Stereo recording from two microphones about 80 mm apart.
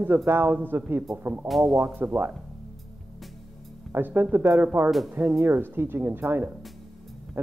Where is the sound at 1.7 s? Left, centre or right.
Right.